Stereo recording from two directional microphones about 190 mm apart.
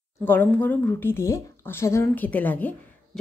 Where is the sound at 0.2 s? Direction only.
10° left (ahead or behind).